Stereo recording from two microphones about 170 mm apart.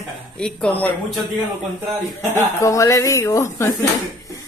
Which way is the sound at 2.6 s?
20° left (ahead or behind).